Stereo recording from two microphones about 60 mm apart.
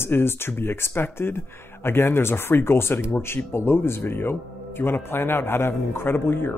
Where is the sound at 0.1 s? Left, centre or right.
Left.